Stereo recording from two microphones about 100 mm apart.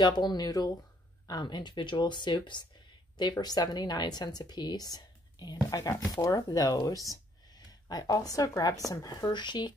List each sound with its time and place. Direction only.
0.0 s a woman's voice: 45° left (ahead or behind)